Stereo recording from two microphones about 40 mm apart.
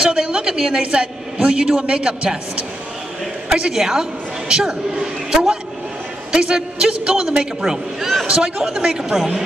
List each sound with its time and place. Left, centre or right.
0.0 s a man's voice: right
3.4 s a man's voice: centre
7.2 s a man's voice: centre
8.3 s a man's voice: centre